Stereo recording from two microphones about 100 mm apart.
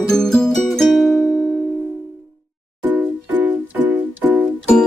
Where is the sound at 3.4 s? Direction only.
15° right (ahead or behind).